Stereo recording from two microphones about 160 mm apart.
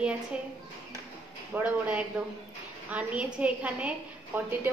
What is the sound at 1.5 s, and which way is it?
A woman's voice, 10° right (ahead or behind).